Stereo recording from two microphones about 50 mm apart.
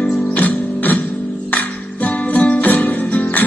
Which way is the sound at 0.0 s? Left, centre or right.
Left.